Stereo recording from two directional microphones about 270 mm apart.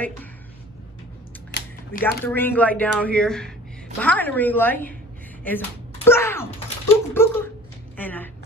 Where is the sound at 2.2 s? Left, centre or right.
Centre.